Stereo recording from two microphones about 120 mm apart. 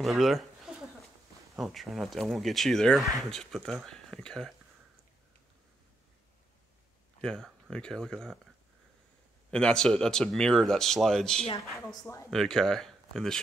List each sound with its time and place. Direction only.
0.0 s a sound: centre (ahead or behind)
1.6 s speech: centre (ahead or behind)
7.2 s speech: centre (ahead or behind)
9.5 s speech: 5° left (ahead or behind)
11.9 s speech: 30° left (ahead or behind)
12.3 s speech: 5° left (ahead or behind)